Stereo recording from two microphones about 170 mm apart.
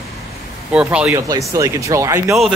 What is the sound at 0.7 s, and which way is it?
Speech, 5° right (ahead or behind).